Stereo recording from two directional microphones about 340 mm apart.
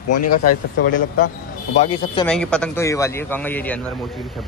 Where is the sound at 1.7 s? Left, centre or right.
Centre.